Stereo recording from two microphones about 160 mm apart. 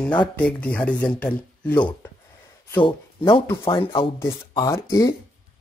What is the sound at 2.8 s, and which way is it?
Speech, 30° left (ahead or behind).